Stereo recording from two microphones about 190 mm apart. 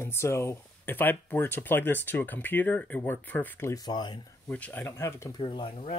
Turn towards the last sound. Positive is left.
turn(degrees=30)  # may be behind; listen again after turning